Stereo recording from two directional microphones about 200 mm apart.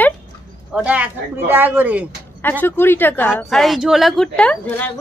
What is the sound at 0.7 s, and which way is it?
Speech, 5° right (ahead or behind).